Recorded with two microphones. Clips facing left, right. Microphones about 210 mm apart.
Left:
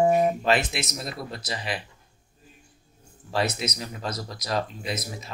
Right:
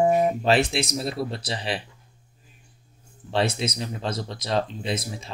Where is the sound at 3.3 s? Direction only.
30° right (ahead or behind).